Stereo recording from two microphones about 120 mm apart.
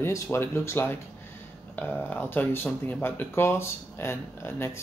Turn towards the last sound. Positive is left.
turn(degrees=20)  # may be behind; listen again after turning